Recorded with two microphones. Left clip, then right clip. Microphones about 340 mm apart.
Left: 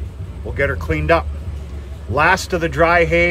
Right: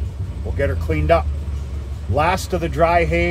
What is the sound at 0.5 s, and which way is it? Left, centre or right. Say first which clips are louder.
Speech: left 3 dB; left.